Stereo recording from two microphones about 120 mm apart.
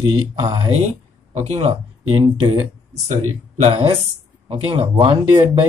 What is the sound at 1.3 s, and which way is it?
Speech, 65° right (ahead or behind).